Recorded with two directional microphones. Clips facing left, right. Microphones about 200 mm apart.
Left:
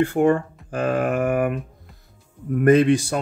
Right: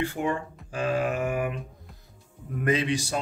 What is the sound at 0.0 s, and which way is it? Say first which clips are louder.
Speech: left 10 dB; 50° left (ahead or behind).